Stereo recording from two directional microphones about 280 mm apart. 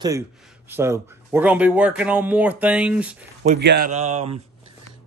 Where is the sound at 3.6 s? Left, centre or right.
Right.